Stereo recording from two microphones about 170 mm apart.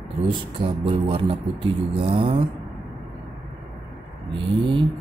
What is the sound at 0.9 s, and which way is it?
Speech, 30° right (ahead or behind).